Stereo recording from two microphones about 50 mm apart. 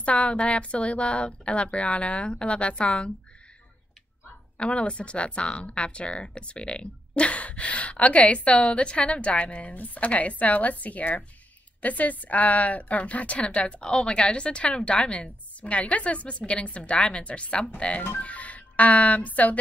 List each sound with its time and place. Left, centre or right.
0.0 s speech: left
4.6 s speech: left